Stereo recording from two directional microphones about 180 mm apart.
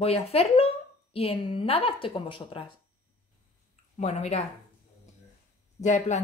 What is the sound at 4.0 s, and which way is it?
Speech, 35° left (ahead or behind).